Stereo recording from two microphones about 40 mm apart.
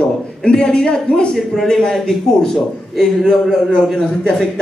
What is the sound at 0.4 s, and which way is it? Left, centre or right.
A man's voice, left.